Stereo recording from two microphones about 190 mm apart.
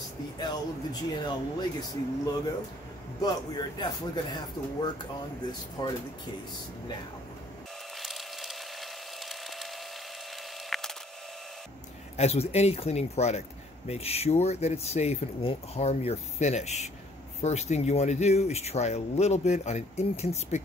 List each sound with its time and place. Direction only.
0.4 s speech: 20° left (ahead or behind)
5.5 s speech: 25° left (ahead or behind)
8.0 s wood: centre (ahead or behind)
10.7 s a sound: centre (ahead or behind)
12.2 s speech: 35° left (ahead or behind)